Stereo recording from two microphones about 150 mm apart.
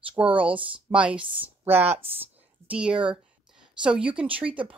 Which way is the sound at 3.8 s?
5° right (ahead or behind).